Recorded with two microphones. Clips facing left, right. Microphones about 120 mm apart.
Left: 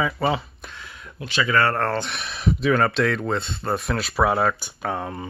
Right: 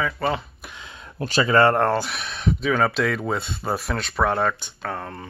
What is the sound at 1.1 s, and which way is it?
Speech, 40° right (ahead or behind).